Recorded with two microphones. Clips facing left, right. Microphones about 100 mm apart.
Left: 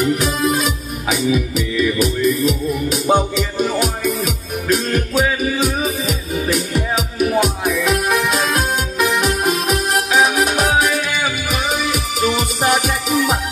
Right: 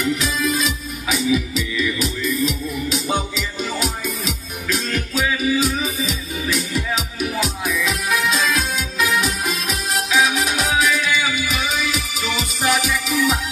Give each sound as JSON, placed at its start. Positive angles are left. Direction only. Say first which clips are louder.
{"t": 0.0, "sound": "music", "louder": "left 4 dB", "side_deg": 55}